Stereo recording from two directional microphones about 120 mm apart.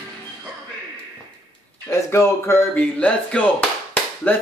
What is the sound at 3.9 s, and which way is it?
Clapping, 15° left (ahead or behind).